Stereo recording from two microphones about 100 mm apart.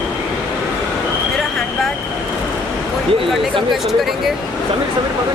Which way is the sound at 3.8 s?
Centre (ahead or behind).